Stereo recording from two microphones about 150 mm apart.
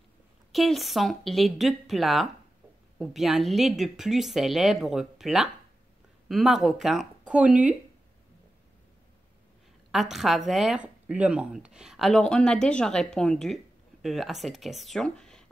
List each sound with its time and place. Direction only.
0.5 s speech: centre (ahead or behind)
9.8 s speech: centre (ahead or behind)